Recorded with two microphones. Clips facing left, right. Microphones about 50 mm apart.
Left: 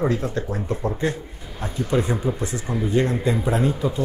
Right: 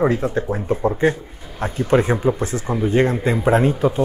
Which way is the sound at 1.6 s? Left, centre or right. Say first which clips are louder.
Right 6 dB; right.